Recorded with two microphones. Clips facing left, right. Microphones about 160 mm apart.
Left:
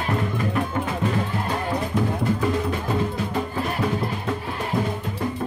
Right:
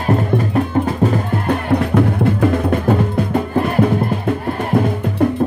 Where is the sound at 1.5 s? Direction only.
60° right (ahead or behind).